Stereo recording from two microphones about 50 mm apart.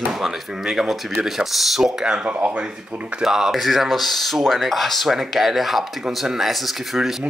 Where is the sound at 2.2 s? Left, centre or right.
Right.